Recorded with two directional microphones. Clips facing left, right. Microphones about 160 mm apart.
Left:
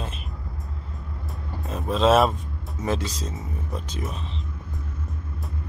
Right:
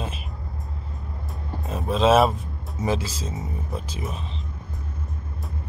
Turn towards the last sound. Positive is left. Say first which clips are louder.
# even
turn(degrees=0)  # may be behind; listen again after turning